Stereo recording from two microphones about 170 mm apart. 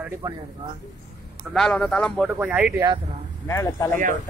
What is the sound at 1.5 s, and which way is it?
Speech, 5° left (ahead or behind).